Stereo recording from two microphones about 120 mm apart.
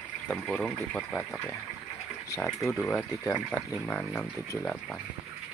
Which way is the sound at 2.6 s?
Centre (ahead or behind).